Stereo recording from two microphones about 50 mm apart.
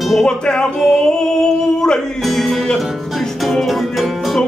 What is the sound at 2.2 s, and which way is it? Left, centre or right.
Music, centre.